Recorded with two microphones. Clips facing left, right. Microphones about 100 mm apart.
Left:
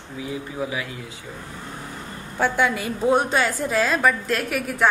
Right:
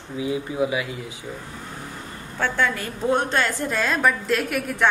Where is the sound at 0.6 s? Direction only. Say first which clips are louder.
Right 3 dB; 10° right (ahead or behind).